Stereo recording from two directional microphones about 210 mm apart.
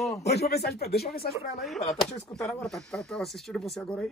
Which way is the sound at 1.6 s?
Centre (ahead or behind).